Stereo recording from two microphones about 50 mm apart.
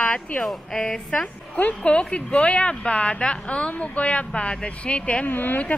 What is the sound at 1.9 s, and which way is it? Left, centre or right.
A woman's voice, centre.